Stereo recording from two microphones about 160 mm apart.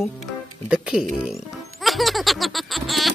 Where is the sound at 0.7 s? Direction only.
5° right (ahead or behind).